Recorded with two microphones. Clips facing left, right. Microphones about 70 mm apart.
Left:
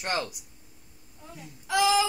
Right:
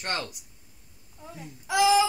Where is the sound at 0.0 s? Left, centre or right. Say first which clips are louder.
Left 2 dB; centre.